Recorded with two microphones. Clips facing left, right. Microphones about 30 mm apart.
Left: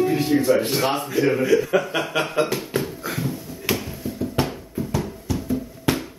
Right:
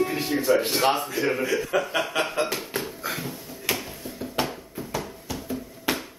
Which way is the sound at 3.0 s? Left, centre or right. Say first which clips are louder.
Left 4 dB; centre.